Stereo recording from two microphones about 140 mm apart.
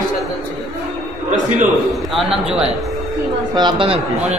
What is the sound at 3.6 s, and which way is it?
Speech, 35° right (ahead or behind).